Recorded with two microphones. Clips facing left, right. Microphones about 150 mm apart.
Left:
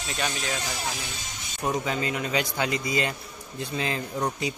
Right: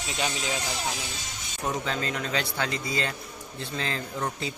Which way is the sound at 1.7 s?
10° left (ahead or behind).